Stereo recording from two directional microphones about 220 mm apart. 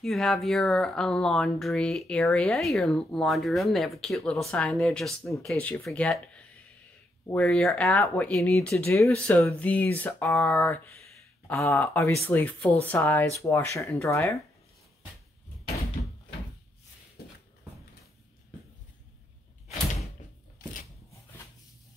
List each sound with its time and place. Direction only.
0.0 s speech: centre (ahead or behind)
17.2 s shuffle: 45° left (ahead or behind)